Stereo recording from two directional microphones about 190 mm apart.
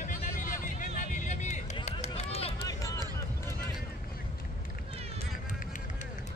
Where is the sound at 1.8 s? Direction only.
35° left (ahead or behind).